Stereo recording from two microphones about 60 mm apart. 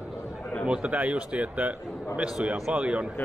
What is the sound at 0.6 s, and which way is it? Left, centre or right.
Speech, centre.